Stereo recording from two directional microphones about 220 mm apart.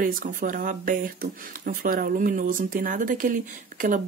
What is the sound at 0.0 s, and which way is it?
Speech, 40° right (ahead or behind).